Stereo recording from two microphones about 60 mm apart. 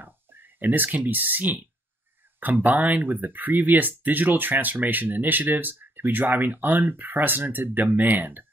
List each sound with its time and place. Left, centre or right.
0.0 s speech: right